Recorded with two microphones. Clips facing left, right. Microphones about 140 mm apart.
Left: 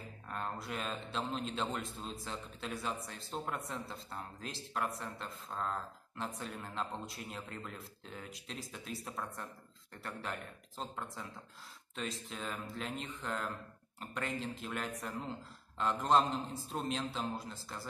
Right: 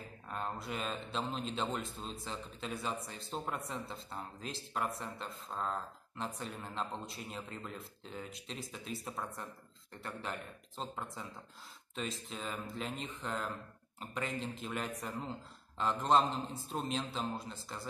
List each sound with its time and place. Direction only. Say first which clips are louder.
0.3 s speech: right 1 dB; centre (ahead or behind)